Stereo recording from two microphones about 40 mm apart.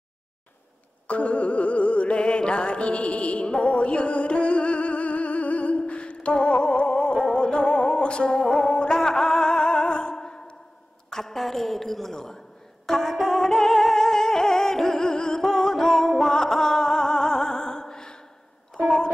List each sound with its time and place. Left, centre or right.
1.0 s music: left
11.1 s a woman's voice: centre
12.8 s music: centre
18.8 s a sound: centre